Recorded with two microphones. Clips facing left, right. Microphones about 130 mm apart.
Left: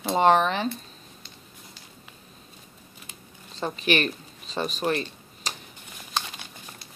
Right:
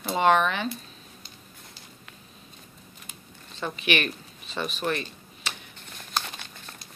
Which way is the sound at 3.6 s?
40° left (ahead or behind).